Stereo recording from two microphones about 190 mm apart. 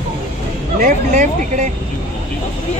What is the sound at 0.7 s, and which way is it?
Speech, 40° right (ahead or behind).